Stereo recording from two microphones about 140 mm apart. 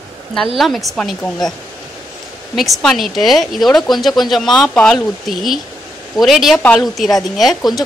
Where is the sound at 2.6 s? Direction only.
Centre (ahead or behind).